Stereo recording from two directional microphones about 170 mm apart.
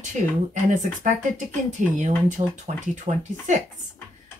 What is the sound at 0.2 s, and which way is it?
Speech, 45° right (ahead or behind).